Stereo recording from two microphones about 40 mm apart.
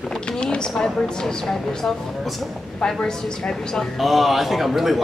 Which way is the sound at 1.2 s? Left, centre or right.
Centre.